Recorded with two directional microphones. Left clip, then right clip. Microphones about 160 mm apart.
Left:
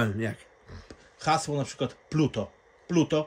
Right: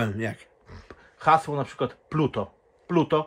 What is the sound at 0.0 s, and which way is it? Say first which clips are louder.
Speech: right 1 dB; 5° left (ahead or behind).